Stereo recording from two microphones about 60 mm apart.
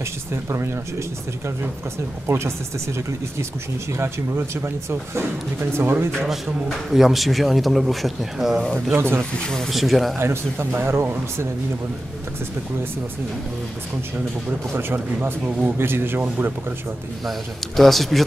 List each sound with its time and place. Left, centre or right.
0.3 s speech: right
2.2 s speech: right
6.2 s a man's voice: centre
8.9 s speech: right
9.3 s a man's voice: centre
10.1 s speech: right
14.5 s speech: right
17.3 s a man's voice: centre